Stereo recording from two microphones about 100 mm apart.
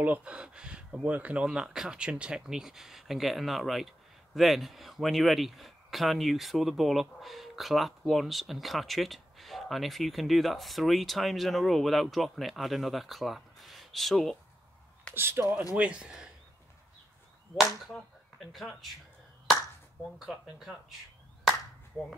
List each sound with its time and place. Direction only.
0.0 s speech: 15° right (ahead or behind); by 14.3 s centre (ahead or behind)
15.1 s speech: 25° right (ahead or behind)
15.7 s speech: 10° right (ahead or behind)
17.6 s a sound: centre (ahead or behind)
20.2 s speech: centre (ahead or behind)